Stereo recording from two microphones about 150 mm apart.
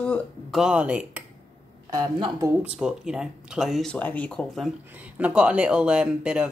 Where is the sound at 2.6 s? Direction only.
5° right (ahead or behind).